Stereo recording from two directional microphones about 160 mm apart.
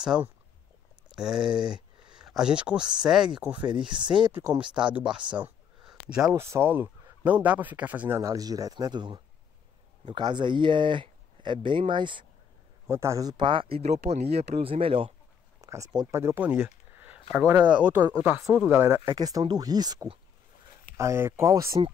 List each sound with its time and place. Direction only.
0.0 s speech: 5° right (ahead or behind)
4.3 s speech: 20° right (ahead or behind)
4.7 s speech: 5° right (ahead or behind)
5.3 s a sound: 5° right (ahead or behind)
6.2 s speech: 15° right (ahead or behind)
12.8 s speech: 20° right (ahead or behind); by 15.1 s 35° right (ahead or behind)
15.6 s speech: 20° right (ahead or behind)